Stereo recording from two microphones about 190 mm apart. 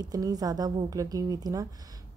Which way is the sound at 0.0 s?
20° right (ahead or behind).